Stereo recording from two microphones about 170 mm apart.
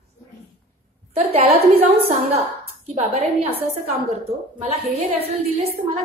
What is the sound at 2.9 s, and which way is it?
A woman's voice, 40° right (ahead or behind).